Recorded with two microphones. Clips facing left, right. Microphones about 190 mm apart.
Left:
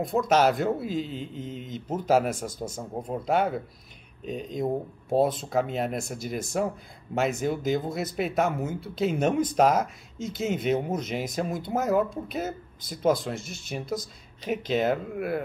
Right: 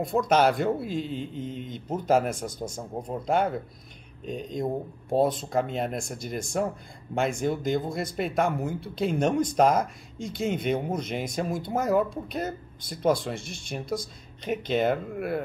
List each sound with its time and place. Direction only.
0.0 s speech: centre (ahead or behind)
2.6 s a man's voice: 25° left (ahead or behind)
3.1 s speech: centre (ahead or behind)